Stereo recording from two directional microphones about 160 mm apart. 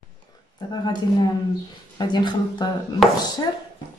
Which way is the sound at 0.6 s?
25° left (ahead or behind).